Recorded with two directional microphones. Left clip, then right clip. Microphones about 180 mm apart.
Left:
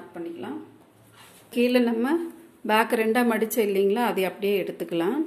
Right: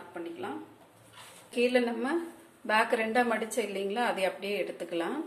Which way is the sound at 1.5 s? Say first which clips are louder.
Left 5 dB; 55° left (ahead or behind).